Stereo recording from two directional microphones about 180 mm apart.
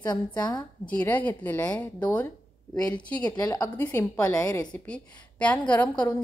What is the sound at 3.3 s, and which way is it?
A woman's voice, 20° left (ahead or behind).